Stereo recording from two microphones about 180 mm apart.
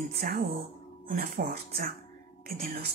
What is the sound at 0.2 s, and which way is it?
Speech, 55° right (ahead or behind).